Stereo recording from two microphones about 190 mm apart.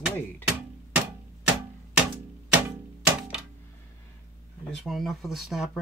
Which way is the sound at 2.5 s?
5° right (ahead or behind).